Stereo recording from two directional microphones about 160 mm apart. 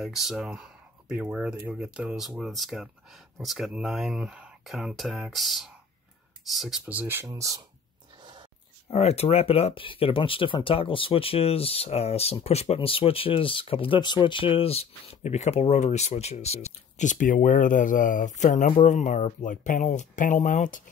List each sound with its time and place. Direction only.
0.0 s speech: centre (ahead or behind); by 7.6 s 20° right (ahead or behind)
8.2 s a sound: 30° right (ahead or behind)
8.9 s speech: 40° left (ahead or behind)